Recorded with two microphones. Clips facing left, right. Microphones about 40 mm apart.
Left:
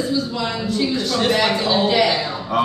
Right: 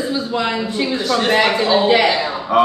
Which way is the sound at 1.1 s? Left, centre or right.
Centre.